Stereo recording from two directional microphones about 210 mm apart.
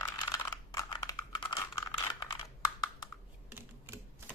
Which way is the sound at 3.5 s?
10° right (ahead or behind).